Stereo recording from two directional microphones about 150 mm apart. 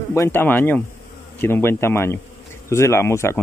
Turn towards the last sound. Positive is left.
turn(degrees=20)  # may be behind; listen again after turning